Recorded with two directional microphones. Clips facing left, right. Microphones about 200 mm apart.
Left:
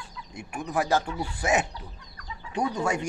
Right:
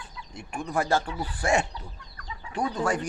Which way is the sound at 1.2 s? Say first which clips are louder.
Even; 5° left (ahead or behind).